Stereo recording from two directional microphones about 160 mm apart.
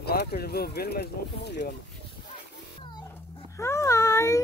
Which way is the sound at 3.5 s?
20° left (ahead or behind).